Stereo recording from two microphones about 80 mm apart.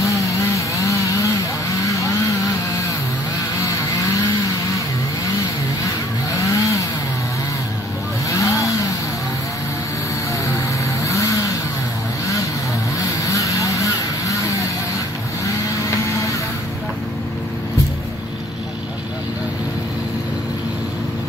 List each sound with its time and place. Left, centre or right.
0.0 s chainsaw: left
6.3 s vehicle: left
8.3 s vehicle: left
10.4 s vehicle: left
13.2 s vehicle: left